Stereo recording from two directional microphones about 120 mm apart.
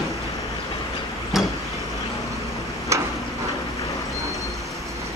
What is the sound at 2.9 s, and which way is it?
Tick-tock, 25° right (ahead or behind).